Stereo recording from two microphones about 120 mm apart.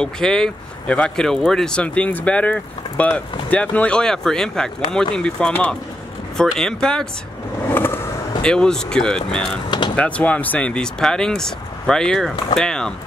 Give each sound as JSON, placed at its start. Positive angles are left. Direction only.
{"t": 0.0, "sound": "speech", "side_deg": 5}
{"t": 7.7, "sound": "vehicle", "side_deg": 20}
{"t": 8.4, "sound": "speech", "side_deg": 5}
{"t": 9.7, "sound": "speech", "side_deg": 40}
{"t": 9.9, "sound": "speech", "side_deg": 10}